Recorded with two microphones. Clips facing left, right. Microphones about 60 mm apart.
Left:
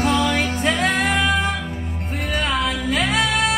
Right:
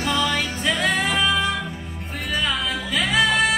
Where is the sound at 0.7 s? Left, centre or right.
Left.